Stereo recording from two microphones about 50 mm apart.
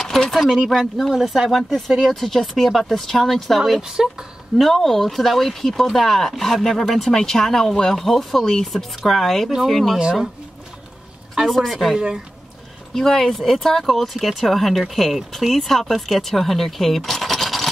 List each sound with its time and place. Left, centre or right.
0.0 s a sound: centre
0.7 s speech: centre
3.8 s speech: centre
4.6 s speech: centre
11.4 s speech: centre